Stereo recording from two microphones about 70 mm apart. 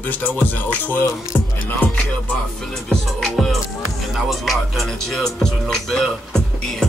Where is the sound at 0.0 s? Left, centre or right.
Left.